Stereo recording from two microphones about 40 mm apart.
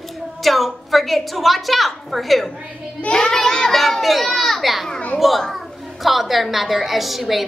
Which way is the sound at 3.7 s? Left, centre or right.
Centre.